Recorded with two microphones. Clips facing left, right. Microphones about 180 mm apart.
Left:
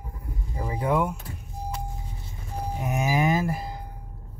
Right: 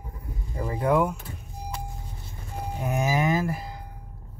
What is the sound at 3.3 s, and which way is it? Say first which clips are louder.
Speech: left 1 dB; 25° left (ahead or behind).